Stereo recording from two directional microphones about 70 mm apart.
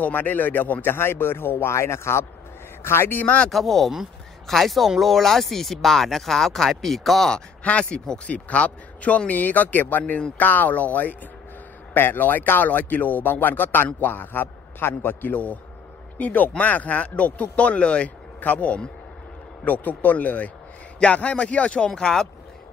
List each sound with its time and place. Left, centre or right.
0.0 s speech: left
3.4 s speech: centre